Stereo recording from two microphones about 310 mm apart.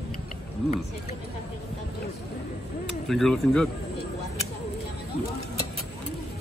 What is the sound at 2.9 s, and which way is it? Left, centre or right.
Speech, centre.